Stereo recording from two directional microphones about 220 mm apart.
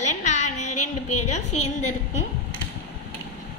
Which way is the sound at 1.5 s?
90° left.